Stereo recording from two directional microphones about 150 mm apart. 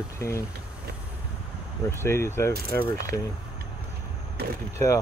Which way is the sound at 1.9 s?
15° left (ahead or behind).